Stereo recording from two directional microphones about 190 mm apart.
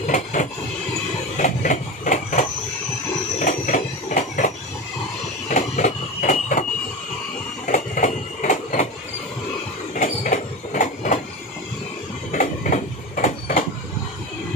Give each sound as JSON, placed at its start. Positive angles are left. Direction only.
{"t": 0.0, "sound": "train", "side_deg": 40}
{"t": 1.3, "sound": "printer", "side_deg": 40}
{"t": 3.3, "sound": "a sound", "side_deg": 40}
{"t": 5.5, "sound": "printer", "side_deg": 40}
{"t": 7.6, "sound": "printer", "side_deg": 40}
{"t": 9.9, "sound": "train", "side_deg": 40}
{"t": 12.3, "sound": "train", "side_deg": 40}